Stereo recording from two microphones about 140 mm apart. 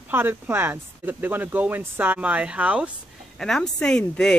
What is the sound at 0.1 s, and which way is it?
Speech, 15° right (ahead or behind).